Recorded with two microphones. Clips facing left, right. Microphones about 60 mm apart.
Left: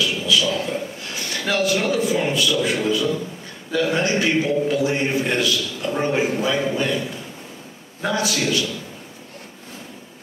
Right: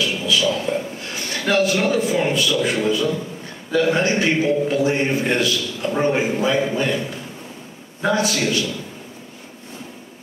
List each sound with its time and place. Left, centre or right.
0.0 s a man's voice: right
8.1 s a man's voice: right